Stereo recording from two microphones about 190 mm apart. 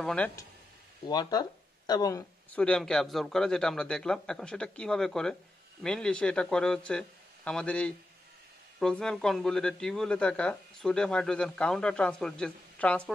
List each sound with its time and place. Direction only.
0.0 s speech: 5° left (ahead or behind)
1.0 s speech: 20° left (ahead or behind)
2.5 s speech: 5° left (ahead or behind)